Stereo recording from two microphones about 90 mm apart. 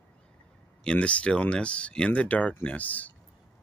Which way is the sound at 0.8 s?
15° left (ahead or behind).